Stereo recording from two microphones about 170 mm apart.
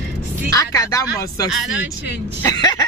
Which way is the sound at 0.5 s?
20° left (ahead or behind).